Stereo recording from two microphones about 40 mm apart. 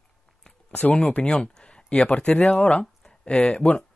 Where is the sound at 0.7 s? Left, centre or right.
Left.